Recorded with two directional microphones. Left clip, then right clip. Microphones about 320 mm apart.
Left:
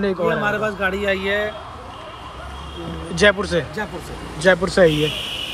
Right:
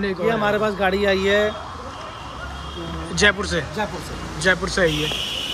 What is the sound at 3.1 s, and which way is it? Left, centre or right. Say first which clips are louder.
A man's voice: left 2 dB; centre.